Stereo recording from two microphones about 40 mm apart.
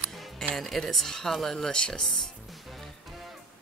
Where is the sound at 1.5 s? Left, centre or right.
Centre.